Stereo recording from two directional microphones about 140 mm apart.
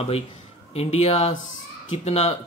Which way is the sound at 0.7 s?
45° left (ahead or behind).